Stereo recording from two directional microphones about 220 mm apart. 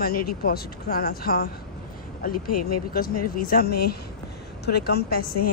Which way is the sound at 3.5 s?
45° left (ahead or behind).